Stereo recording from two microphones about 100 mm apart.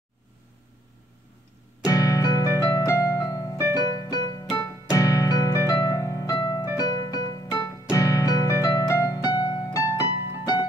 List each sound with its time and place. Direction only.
1.9 s piano: 35° left (ahead or behind)
3.7 s music: 40° left (ahead or behind)
4.6 s keyboard: 35° left (ahead or behind)
5.8 s music: 35° left (ahead or behind)
7.9 s piano: 35° left (ahead or behind)
10.4 s music: 45° left (ahead or behind)